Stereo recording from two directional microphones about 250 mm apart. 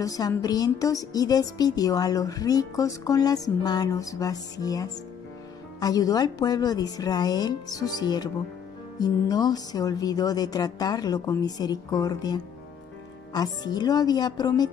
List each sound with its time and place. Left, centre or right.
0.0 s speech: centre